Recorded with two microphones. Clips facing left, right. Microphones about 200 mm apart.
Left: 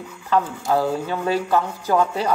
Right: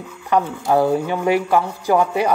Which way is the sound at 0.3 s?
15° right (ahead or behind).